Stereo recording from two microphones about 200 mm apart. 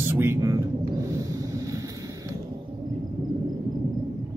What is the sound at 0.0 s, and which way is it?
Speech, 10° right (ahead or behind).